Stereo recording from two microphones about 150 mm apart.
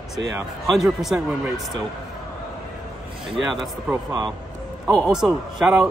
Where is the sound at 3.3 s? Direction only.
Centre (ahead or behind).